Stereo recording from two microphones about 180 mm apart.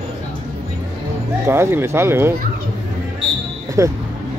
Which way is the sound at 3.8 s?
15° right (ahead or behind).